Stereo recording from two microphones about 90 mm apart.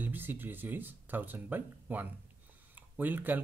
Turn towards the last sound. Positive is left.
turn(degrees=-20)  # may be behind; listen again after turning